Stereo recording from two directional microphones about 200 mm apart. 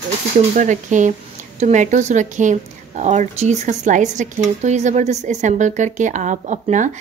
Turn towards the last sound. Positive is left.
turn(degrees=-35)  # may be behind; listen again after turning